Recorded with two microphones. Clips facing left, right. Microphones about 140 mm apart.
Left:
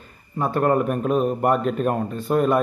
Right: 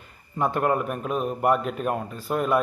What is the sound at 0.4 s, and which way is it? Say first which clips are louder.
Speech: left 2 dB; 20° right (ahead or behind).